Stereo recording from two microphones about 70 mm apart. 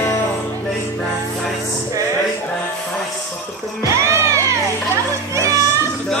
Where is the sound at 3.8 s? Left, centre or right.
Right.